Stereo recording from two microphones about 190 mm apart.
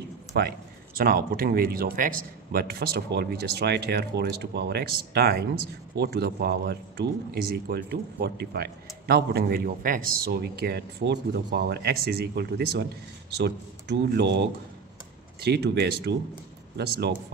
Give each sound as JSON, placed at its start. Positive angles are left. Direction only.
{"t": 0.4, "sound": "speech", "side_deg": -55}